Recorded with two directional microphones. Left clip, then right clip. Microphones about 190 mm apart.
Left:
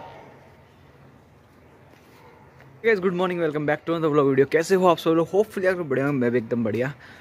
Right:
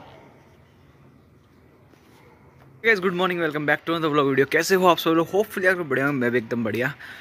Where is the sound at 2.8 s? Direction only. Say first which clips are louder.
Right 1 dB; centre (ahead or behind).